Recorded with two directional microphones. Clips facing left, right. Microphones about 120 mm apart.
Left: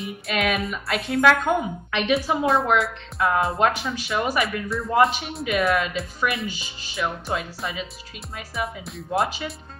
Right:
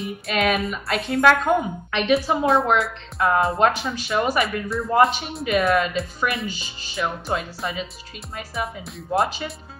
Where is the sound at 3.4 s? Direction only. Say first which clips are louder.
Right 3 dB; centre (ahead or behind).